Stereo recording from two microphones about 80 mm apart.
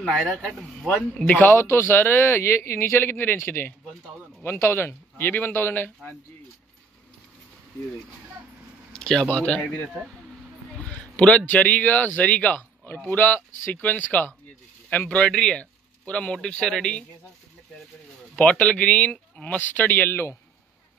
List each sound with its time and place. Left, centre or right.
0.1 s speech: centre
0.8 s speech: centre
8.9 s speech: centre
18.3 s speech: centre; by 20.3 s left